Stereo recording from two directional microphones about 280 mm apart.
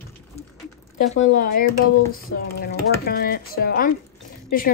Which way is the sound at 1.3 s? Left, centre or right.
Left.